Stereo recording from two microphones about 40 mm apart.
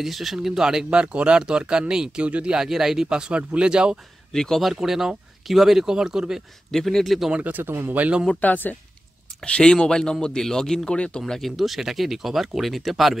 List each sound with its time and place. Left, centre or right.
0.0 s speech: centre
0.9 s speech: right
2.2 s speech: right
2.5 s speech: centre
4.3 s speech: centre
4.7 s speech: centre
6.7 s speech: centre
7.6 s speech: right
8.4 s speech: left
9.4 s speech: left
11.3 s speech: centre